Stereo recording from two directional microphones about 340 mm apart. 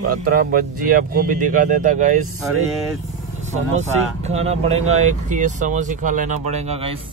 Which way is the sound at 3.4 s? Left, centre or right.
Centre.